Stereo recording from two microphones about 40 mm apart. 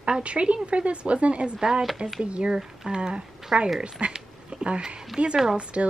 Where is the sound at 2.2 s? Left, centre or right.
Right.